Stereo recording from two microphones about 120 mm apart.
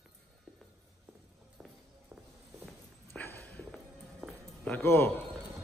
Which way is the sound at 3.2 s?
15° left (ahead or behind).